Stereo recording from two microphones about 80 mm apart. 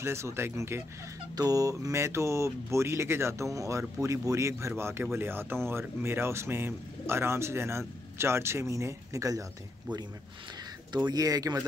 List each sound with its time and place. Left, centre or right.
0.0 s speech: right
1.3 s speech: right
11.1 s speech: right